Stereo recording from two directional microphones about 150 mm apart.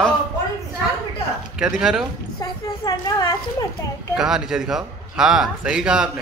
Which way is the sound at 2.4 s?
25° left (ahead or behind).